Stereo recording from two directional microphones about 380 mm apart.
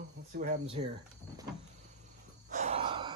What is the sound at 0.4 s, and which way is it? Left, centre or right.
Speech, centre.